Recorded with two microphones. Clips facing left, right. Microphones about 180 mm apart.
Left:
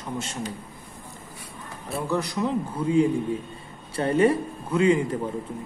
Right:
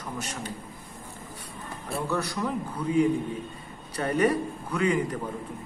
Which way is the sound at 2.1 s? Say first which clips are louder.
Left 5 dB; 15° left (ahead or behind).